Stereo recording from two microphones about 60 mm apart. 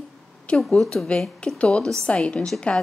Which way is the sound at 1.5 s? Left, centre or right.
Centre.